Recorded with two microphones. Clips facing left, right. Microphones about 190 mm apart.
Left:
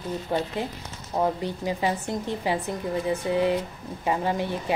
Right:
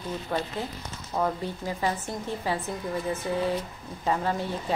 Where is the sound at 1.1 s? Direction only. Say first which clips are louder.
Left 3 dB; 20° left (ahead or behind).